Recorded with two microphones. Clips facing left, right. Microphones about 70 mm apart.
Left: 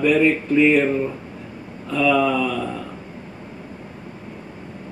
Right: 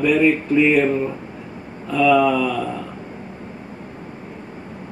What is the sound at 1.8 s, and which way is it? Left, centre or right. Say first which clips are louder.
Mantra: right 3 dB; centre.